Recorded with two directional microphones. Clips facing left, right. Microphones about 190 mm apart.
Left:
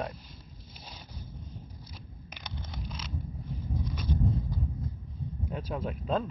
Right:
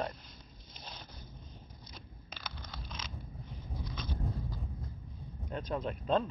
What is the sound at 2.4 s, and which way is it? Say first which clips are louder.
Vehicle: left 5 dB; 20° left (ahead or behind).